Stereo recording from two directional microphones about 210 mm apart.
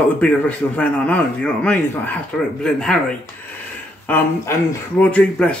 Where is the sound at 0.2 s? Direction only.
5° left (ahead or behind).